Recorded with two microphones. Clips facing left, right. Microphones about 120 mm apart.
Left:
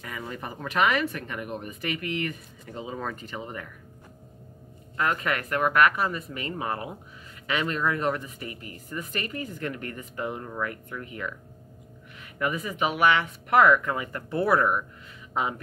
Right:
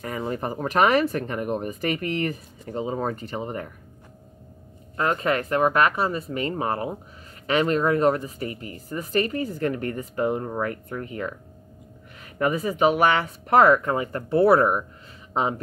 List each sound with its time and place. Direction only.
0.2 s speech: 40° right (ahead or behind)
4.9 s speech: 30° right (ahead or behind)
12.4 s speech: 35° right (ahead or behind)